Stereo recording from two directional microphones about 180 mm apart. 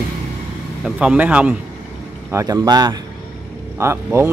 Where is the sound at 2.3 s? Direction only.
15° right (ahead or behind).